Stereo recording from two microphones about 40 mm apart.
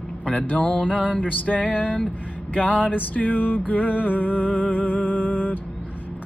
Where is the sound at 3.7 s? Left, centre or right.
Left.